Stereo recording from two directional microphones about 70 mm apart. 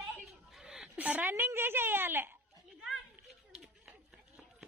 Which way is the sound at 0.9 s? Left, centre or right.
Right.